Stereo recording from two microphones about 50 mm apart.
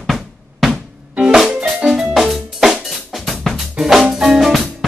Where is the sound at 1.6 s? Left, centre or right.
Centre.